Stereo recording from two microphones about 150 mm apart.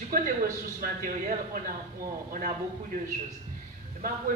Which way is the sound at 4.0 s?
70° right (ahead or behind).